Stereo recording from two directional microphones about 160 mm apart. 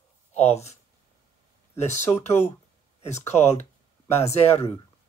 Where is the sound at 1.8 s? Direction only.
45° left (ahead or behind).